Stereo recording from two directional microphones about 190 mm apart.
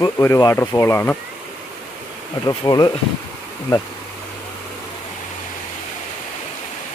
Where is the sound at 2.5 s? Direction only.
20° left (ahead or behind).